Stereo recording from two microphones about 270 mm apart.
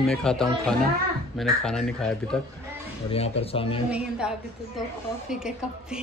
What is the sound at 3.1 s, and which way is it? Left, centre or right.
Speech, left.